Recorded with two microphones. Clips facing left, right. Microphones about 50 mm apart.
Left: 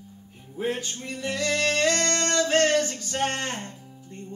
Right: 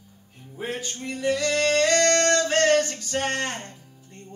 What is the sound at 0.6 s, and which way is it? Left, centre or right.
Music, centre.